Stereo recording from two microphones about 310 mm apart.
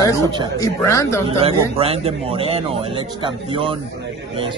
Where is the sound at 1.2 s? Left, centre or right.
Centre.